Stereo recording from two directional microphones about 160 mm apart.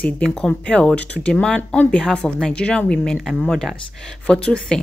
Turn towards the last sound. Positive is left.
turn(degrees=5)  # may be behind; listen again after turning